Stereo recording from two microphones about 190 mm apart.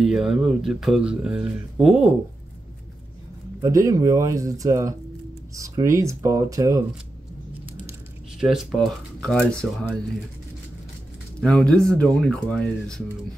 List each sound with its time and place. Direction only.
0.0 s speech: centre (ahead or behind)
3.6 s speech: 15° right (ahead or behind)
8.4 s speech: centre (ahead or behind)
11.4 s speech: 5° left (ahead or behind)